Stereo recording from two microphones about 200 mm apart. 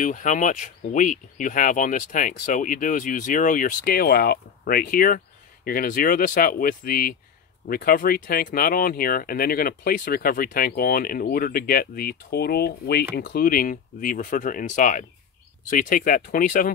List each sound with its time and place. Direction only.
0.0 s speech: 40° left (ahead or behind)